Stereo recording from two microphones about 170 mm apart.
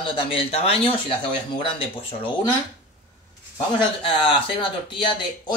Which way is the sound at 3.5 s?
30° left (ahead or behind).